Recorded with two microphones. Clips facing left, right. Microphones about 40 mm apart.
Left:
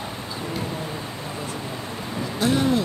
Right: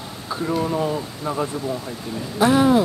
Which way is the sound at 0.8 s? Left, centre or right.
Right.